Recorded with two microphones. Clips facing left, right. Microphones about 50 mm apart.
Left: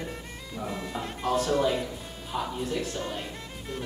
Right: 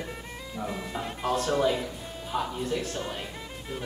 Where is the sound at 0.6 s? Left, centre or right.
Centre.